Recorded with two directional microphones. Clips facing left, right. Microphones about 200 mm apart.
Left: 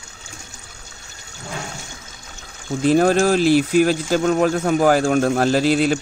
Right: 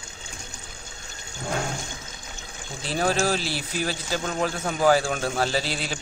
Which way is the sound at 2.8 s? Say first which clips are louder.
Left 10 dB; 50° left (ahead or behind).